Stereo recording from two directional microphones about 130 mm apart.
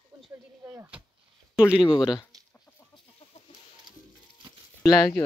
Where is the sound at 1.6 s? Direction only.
35° left (ahead or behind).